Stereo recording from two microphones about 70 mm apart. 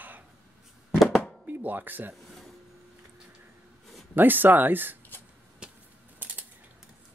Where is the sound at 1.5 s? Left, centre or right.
Right.